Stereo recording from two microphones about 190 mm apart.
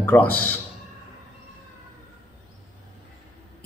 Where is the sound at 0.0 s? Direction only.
10° left (ahead or behind).